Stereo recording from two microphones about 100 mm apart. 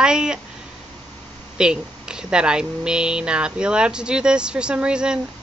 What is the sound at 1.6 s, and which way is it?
Speech, 10° right (ahead or behind).